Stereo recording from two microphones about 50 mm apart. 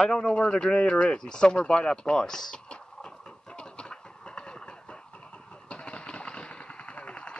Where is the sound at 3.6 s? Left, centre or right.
Centre.